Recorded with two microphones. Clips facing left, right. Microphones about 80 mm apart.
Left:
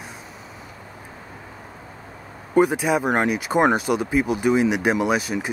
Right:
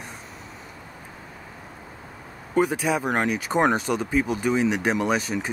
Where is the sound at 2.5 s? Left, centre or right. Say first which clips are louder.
Left 4 dB; centre.